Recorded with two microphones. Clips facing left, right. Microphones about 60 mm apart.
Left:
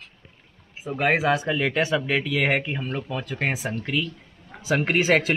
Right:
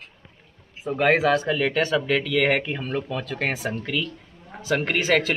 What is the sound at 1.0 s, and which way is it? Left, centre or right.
Speech, centre.